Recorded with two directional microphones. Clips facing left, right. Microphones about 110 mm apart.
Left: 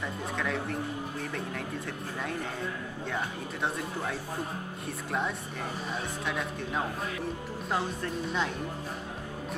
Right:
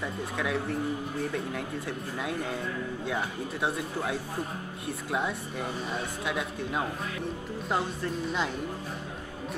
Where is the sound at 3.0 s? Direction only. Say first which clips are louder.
Even; 5° right (ahead or behind).